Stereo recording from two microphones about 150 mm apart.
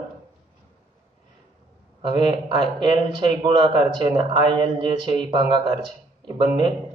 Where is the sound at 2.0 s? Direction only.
30° right (ahead or behind).